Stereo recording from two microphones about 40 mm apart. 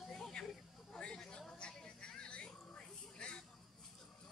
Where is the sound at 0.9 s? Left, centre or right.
Centre.